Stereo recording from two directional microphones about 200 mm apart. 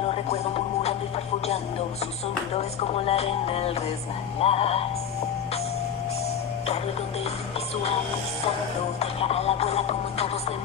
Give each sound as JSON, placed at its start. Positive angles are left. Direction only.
{"t": 0.1, "sound": "music", "side_deg": 30}
{"t": 2.5, "sound": "music", "side_deg": 30}
{"t": 9.0, "sound": "music", "side_deg": 30}